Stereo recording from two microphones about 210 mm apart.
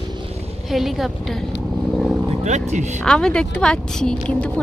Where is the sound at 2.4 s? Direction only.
35° right (ahead or behind).